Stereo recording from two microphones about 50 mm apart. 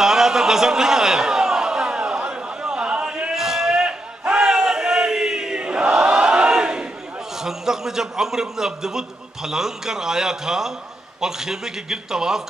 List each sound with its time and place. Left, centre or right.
0.0 s a sound: centre
4.2 s chant: centre
7.3 s a man's voice: centre